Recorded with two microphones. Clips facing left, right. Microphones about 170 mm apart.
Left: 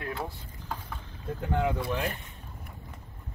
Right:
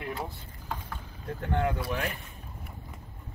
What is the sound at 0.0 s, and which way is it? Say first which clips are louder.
Vehicle: even; 5° right (ahead or behind).